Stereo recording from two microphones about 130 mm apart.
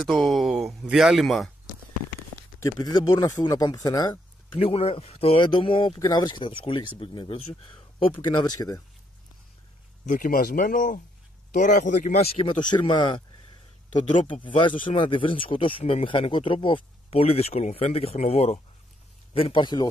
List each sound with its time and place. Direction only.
0.0 s speech: centre (ahead or behind)
2.6 s speech: 30° left (ahead or behind)
4.6 s speech: 50° left (ahead or behind)
5.9 s speech: 30° left (ahead or behind)
10.0 s speech: 90° left
11.5 s speech: 75° left (ahead or behind); by 12.5 s 50° left (ahead or behind)
12.8 s speech: 35° left (ahead or behind); by 18.6 s 60° left (ahead or behind)
19.3 s speech: 45° left (ahead or behind)